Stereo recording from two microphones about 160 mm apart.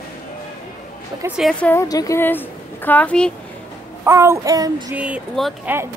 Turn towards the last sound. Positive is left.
turn(degrees=-5)  # may be behind; listen again after turning